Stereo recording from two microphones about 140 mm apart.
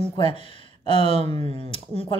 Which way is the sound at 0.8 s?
40° left (ahead or behind).